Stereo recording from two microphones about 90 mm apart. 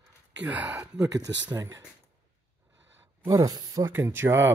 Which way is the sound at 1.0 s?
40° right (ahead or behind).